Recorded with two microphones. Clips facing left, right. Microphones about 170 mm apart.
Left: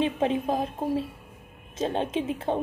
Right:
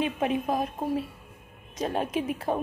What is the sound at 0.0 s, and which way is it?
A woman's voice, 30° left (ahead or behind).